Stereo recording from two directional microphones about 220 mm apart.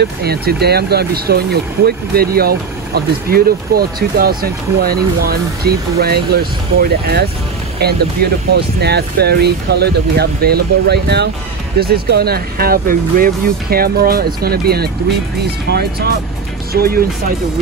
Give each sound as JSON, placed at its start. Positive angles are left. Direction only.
{"t": 0.0, "sound": "speech", "side_deg": -45}
{"t": 7.8, "sound": "speech", "side_deg": -45}